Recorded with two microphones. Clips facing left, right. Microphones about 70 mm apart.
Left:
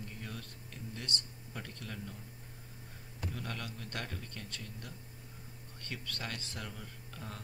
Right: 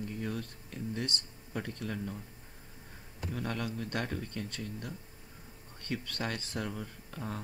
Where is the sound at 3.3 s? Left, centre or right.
Centre.